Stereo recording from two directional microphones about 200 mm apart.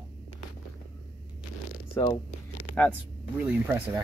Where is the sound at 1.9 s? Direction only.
20° left (ahead or behind).